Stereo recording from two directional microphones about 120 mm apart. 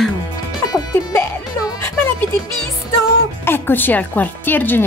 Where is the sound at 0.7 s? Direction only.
30° left (ahead or behind).